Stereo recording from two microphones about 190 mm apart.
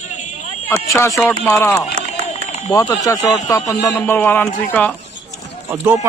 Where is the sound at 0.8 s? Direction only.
15° left (ahead or behind).